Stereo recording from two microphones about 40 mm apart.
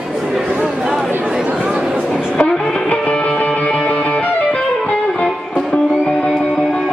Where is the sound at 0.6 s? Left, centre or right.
Centre.